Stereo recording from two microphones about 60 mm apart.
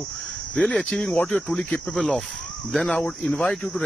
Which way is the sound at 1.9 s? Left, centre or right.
Centre.